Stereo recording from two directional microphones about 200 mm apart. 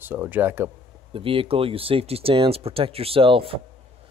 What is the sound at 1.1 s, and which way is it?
Speech, 25° right (ahead or behind).